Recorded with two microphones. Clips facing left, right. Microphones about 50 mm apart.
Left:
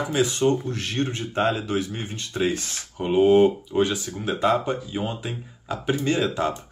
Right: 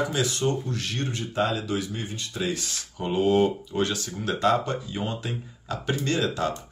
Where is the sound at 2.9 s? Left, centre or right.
Centre.